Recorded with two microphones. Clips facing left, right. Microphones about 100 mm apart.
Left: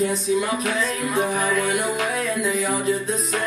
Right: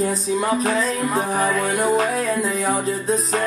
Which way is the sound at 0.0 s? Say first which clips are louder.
Even; 35° right (ahead or behind).